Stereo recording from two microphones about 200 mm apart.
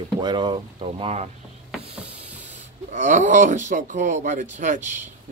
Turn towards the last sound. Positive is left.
turn(degrees=-40)  # may be behind; listen again after turning